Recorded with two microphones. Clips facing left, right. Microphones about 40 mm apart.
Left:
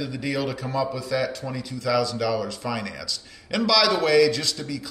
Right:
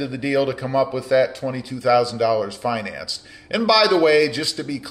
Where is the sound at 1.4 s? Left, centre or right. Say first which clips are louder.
Right 7 dB; centre.